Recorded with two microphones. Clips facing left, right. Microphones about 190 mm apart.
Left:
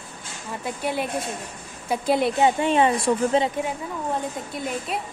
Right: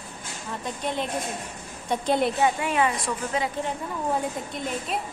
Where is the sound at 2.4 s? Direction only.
25° left (ahead or behind).